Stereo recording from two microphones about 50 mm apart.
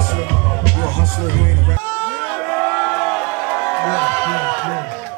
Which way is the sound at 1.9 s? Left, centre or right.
Left.